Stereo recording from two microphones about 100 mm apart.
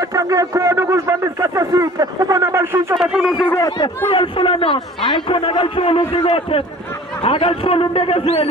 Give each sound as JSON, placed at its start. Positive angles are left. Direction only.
{"t": 0.0, "sound": "a man's voice", "side_deg": -35}
{"t": 3.0, "sound": "a man's voice", "side_deg": -10}
{"t": 4.1, "sound": "a man's voice", "side_deg": 60}